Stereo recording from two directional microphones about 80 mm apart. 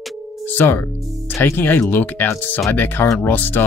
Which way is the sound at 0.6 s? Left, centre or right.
Left.